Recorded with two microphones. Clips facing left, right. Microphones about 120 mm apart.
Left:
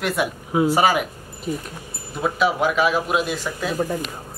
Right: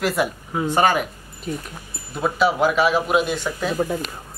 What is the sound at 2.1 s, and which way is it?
Speech, centre (ahead or behind).